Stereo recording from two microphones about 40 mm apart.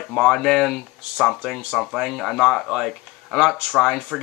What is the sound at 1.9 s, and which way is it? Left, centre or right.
Speech, centre.